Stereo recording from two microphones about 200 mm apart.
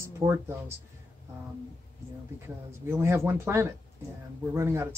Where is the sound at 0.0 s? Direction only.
15° right (ahead or behind).